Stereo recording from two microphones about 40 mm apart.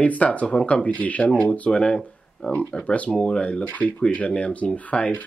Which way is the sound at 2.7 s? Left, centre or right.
Left.